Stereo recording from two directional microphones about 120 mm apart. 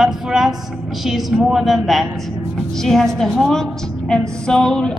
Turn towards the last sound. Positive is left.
turn(degrees=5)  # may be behind; listen again after turning